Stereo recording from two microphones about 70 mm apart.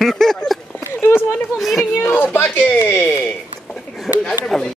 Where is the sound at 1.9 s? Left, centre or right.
Left.